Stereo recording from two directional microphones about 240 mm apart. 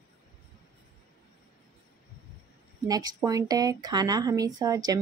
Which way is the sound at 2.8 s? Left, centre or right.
Centre.